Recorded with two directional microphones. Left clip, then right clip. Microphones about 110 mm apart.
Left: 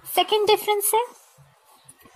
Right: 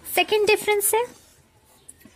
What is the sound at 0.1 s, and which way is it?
Speech, 45° right (ahead or behind).